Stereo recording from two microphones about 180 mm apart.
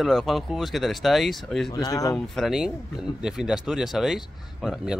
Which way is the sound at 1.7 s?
20° left (ahead or behind).